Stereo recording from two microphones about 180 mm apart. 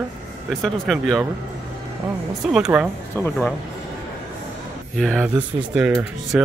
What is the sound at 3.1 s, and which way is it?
Speech, 10° left (ahead or behind).